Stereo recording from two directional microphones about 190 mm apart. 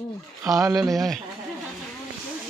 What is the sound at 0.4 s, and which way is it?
Speech, 15° right (ahead or behind).